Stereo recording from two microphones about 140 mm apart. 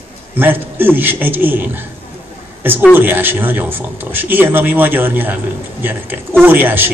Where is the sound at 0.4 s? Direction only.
15° right (ahead or behind).